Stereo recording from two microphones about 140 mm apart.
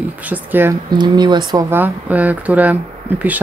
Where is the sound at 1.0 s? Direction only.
30° right (ahead or behind).